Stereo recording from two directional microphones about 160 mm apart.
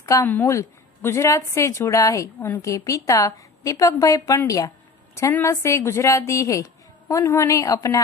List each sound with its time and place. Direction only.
0.0 s a woman's voice: 15° left (ahead or behind)